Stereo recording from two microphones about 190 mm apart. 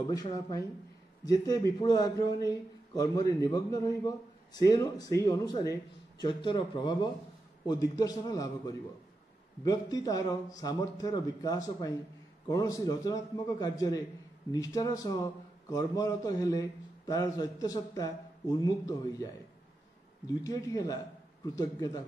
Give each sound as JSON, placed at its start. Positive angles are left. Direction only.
{"t": 0.1, "sound": "a man's voice", "side_deg": 20}
{"t": 20.2, "sound": "a man's voice", "side_deg": 20}